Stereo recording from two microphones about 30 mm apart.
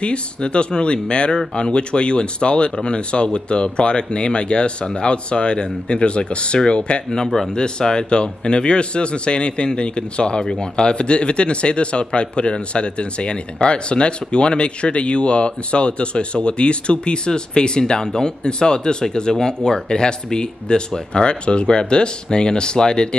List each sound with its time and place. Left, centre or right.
0.0 s speech: left